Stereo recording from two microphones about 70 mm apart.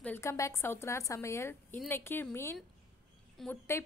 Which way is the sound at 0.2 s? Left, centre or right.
Left.